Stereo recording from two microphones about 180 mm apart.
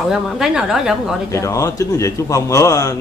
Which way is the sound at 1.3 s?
15° left (ahead or behind).